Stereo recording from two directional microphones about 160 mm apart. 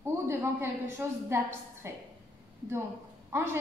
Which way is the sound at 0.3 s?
15° right (ahead or behind).